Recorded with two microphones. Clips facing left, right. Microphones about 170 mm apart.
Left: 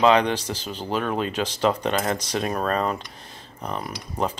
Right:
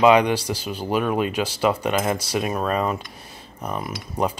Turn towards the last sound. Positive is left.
turn(degrees=-10)  # may be behind; listen again after turning